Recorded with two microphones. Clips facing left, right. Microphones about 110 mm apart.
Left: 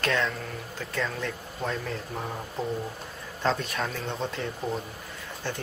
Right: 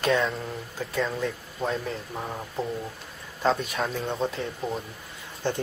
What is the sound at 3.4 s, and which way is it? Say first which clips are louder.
Speech: right 3 dB; 5° right (ahead or behind).